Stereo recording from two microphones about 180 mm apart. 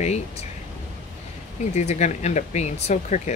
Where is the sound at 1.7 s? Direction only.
40° left (ahead or behind).